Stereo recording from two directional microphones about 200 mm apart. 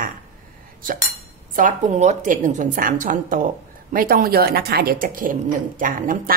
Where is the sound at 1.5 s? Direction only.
40° right (ahead or behind).